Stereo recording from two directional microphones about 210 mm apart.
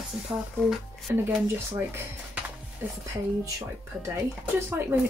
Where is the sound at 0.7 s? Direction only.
10° right (ahead or behind).